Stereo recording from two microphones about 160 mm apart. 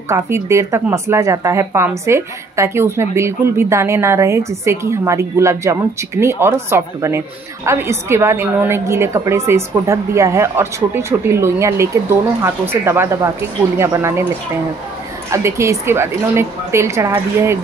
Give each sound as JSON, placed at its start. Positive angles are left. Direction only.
{"t": 0.1, "sound": "speech", "side_deg": -15}
{"t": 15.3, "sound": "speech", "side_deg": -20}